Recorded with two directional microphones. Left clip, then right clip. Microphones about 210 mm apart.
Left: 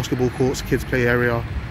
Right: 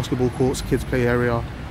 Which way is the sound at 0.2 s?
5° left (ahead or behind).